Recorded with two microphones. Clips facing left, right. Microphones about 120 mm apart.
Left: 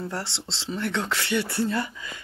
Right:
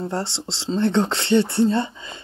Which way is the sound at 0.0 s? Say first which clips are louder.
Right 6 dB; 25° right (ahead or behind).